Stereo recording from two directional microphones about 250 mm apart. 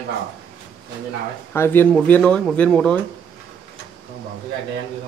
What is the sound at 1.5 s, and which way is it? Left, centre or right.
Speech, centre.